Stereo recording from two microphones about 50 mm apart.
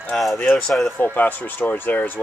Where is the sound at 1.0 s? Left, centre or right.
Left.